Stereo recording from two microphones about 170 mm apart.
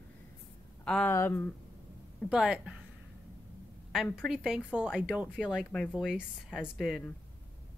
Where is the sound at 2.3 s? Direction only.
5° right (ahead or behind).